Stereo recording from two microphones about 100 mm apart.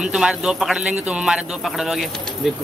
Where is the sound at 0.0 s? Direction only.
5° right (ahead or behind).